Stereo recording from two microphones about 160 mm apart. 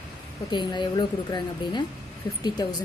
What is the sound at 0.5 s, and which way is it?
Speech, 30° left (ahead or behind).